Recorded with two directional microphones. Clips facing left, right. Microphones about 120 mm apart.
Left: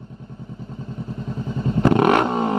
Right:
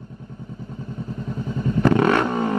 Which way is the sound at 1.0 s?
20° left (ahead or behind).